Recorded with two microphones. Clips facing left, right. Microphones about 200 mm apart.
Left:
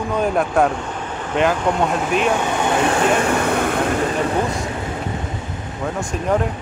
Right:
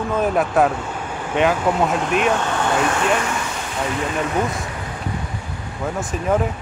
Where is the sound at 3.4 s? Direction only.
60° left (ahead or behind).